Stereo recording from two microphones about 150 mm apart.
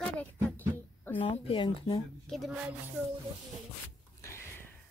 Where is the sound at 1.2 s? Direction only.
35° left (ahead or behind).